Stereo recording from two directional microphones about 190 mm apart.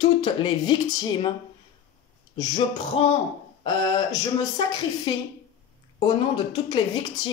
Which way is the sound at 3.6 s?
25° left (ahead or behind).